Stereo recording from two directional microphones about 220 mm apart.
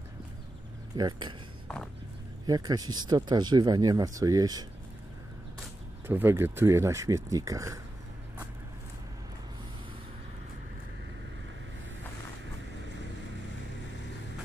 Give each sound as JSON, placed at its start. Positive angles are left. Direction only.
{"t": 0.9, "sound": "speech", "side_deg": -20}
{"t": 2.4, "sound": "speech", "side_deg": -20}
{"t": 6.0, "sound": "speech", "side_deg": -10}